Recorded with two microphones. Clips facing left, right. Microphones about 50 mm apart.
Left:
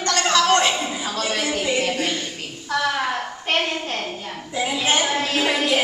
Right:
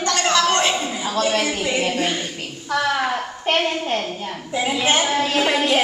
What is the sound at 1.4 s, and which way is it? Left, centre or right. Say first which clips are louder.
Speech: right 1 dB; centre.